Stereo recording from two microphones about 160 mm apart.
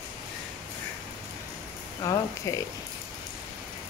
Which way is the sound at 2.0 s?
20° left (ahead or behind).